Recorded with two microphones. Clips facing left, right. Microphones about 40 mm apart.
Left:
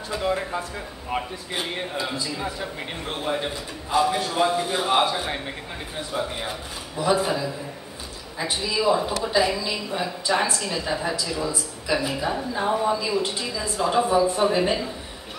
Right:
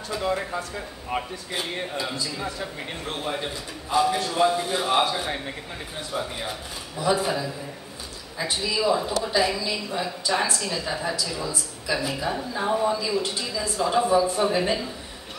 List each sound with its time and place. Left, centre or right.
0.1 s a man's voice: centre
12.8 s speech: centre